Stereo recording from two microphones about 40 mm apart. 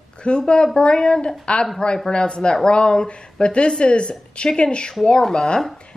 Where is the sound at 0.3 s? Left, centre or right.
Left.